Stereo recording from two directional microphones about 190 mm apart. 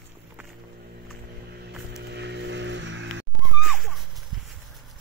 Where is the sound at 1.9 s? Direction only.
60° right (ahead or behind).